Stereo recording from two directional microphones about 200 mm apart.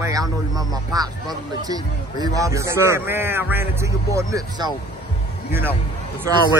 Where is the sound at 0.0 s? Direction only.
20° right (ahead or behind).